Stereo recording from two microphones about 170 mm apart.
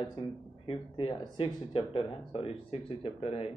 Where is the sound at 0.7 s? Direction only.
30° left (ahead or behind).